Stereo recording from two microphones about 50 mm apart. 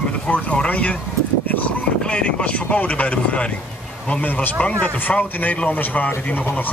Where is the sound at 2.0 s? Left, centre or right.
Left.